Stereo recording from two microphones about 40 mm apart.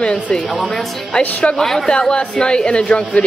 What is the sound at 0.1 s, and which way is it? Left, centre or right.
Speech, centre.